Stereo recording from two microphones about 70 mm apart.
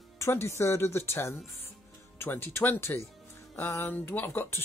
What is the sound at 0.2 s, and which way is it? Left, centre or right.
A man's voice, left.